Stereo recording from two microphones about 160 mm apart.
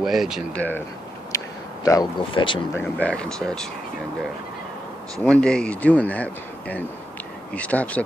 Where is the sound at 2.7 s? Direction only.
10° left (ahead or behind).